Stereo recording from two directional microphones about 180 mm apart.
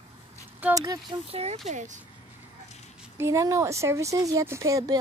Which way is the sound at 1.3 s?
35° right (ahead or behind).